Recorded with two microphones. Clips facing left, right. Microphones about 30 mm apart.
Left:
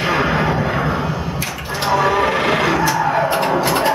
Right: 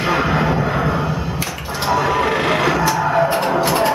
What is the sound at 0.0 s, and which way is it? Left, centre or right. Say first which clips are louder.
Music: even; centre.